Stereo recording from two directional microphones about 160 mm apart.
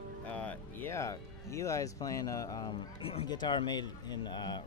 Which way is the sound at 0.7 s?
15° left (ahead or behind).